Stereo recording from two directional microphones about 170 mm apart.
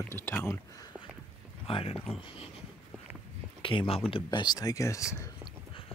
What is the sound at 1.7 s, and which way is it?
Speech, 30° left (ahead or behind).